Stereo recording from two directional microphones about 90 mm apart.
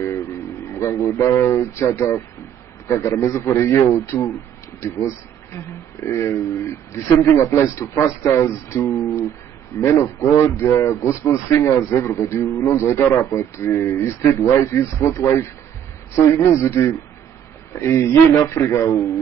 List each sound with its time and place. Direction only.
0.0 s speech: 30° left (ahead or behind)